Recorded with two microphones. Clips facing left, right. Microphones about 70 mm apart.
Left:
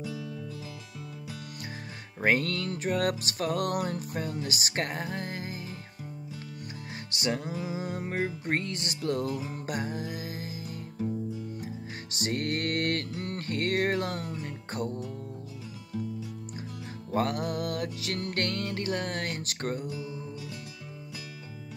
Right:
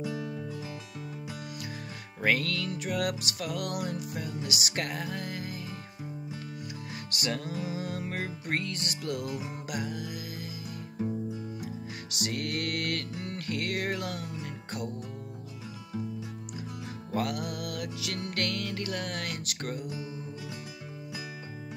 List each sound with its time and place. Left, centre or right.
0.0 s music: right
2.2 s music: left
7.2 s music: left
9.0 s music: left
11.6 s music: left
13.1 s music: left
17.1 s music: left